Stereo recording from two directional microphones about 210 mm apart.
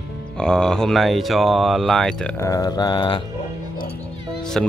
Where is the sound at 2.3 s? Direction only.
15° left (ahead or behind).